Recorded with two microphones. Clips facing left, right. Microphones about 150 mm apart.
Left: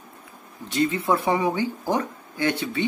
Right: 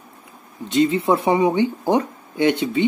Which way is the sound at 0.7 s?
20° right (ahead or behind).